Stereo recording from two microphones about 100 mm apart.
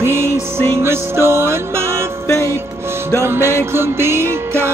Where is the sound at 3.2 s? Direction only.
25° right (ahead or behind).